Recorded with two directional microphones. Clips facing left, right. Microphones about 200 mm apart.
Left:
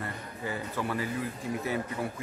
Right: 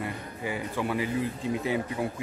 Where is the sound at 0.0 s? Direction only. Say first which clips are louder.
Right 3 dB; 15° right (ahead or behind).